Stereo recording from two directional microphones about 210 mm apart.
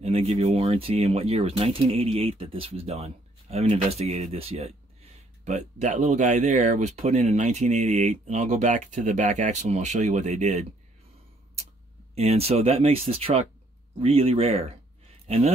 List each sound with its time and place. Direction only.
0.0 s speech: 30° right (ahead or behind)
12.2 s speech: 30° right (ahead or behind)